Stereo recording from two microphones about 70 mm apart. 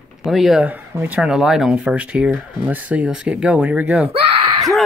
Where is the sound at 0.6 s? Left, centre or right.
Right.